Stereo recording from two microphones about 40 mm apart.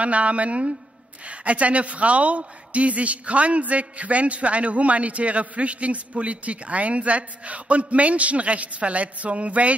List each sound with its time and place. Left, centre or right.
0.0 s a man's voice: right